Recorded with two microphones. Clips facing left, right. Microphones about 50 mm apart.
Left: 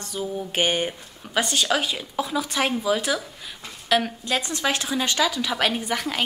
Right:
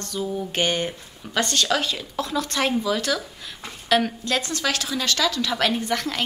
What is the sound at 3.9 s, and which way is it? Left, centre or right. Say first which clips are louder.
Speech: right 1 dB; centre.